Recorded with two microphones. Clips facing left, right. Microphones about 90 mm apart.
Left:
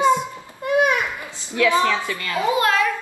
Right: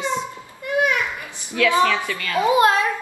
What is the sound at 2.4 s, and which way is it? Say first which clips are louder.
Speech: right 3 dB; 20° right (ahead or behind).